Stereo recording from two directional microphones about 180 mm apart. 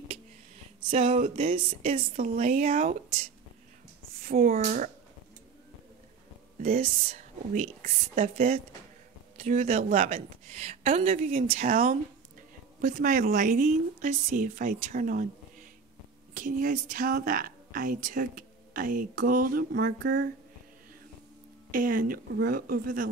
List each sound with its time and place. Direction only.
0.8 s a woman's voice: 30° right (ahead or behind); by 4.9 s 50° right (ahead or behind)
6.7 s a woman's voice: 35° right (ahead or behind)
16.3 s speech: 45° right (ahead or behind)
21.7 s speech: 50° right (ahead or behind)
22.5 s speech: 50° right (ahead or behind)